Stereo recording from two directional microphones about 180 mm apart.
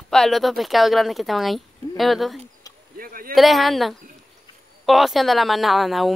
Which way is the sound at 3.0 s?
55° right (ahead or behind).